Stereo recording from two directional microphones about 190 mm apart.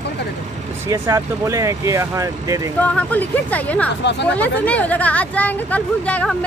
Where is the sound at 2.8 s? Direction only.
10° left (ahead or behind).